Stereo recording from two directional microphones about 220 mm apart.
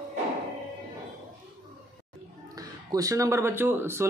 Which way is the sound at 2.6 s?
15° right (ahead or behind).